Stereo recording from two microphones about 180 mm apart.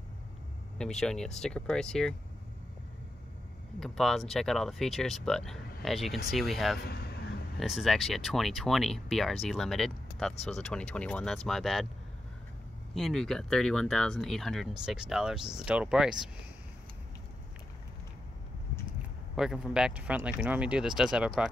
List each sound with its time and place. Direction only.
0.7 s speech: 5° left (ahead or behind)
3.8 s speech: centre (ahead or behind)
6.8 s speech: 65° left (ahead or behind)
7.5 s speech: centre (ahead or behind)
12.9 s speech: centre (ahead or behind)
19.3 s speech: centre (ahead or behind)